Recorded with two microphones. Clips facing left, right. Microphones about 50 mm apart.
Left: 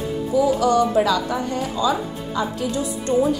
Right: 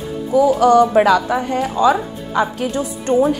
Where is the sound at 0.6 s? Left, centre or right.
Right.